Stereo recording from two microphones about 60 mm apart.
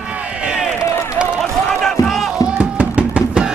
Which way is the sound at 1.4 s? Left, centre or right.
Centre.